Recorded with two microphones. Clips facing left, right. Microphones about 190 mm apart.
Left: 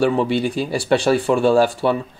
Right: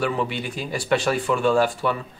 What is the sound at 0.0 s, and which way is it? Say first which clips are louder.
Speech: left 7 dB; 30° left (ahead or behind).